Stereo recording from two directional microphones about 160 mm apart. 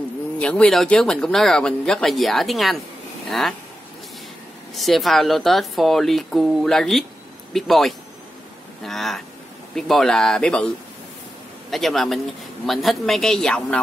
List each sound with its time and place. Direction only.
0.4 s speech: 5° left (ahead or behind)
4.7 s speech: centre (ahead or behind)
11.7 s speech: centre (ahead or behind)